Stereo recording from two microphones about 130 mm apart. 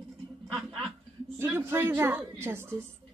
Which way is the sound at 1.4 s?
20° right (ahead or behind).